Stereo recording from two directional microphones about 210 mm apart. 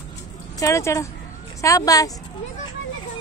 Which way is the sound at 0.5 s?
15° left (ahead or behind).